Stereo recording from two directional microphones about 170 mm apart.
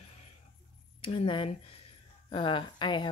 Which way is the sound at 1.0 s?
30° left (ahead or behind).